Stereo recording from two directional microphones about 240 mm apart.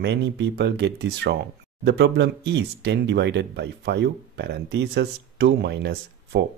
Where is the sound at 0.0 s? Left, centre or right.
Right.